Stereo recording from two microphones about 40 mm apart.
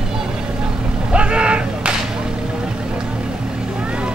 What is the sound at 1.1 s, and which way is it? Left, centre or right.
Vehicle, right.